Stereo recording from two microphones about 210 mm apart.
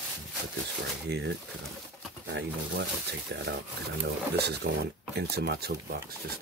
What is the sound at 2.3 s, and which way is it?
Speech, 55° right (ahead or behind).